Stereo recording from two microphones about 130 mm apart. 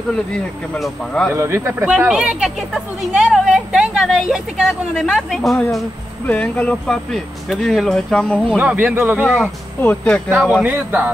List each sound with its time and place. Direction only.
0.1 s speech: 5° left (ahead or behind)
1.3 s speech: 20° right (ahead or behind)
1.9 s speech: 5° right (ahead or behind)
8.5 s speech: 10° right (ahead or behind)
9.3 s speech: 15° left (ahead or behind)
10.5 s speech: 10° right (ahead or behind)